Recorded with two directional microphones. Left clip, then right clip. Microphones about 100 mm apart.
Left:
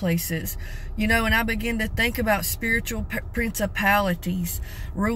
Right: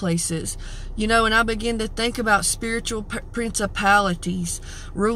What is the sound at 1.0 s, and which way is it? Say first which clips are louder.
Speech: right 4 dB; 20° right (ahead or behind).